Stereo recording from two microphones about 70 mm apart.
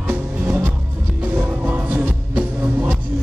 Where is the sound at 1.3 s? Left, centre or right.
Right.